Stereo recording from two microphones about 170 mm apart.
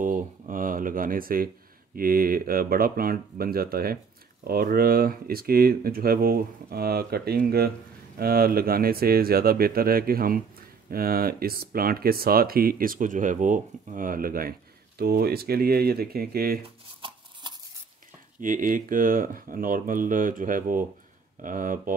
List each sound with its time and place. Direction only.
0.0 s speech: 50° right (ahead or behind)
16.6 s a sound: 30° right (ahead or behind)
18.4 s speech: 50° right (ahead or behind)